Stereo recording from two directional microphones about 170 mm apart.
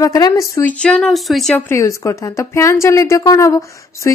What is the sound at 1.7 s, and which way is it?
A woman's voice, 15° left (ahead or behind).